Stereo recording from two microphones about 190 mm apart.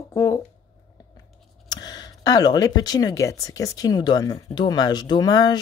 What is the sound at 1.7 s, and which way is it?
Speech, 20° left (ahead or behind).